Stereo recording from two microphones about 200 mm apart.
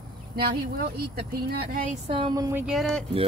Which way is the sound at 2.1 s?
25° right (ahead or behind).